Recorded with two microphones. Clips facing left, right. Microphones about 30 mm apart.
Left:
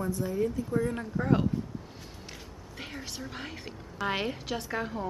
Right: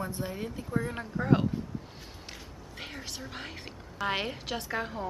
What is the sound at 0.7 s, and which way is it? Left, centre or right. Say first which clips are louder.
Speech: left 3 dB; centre.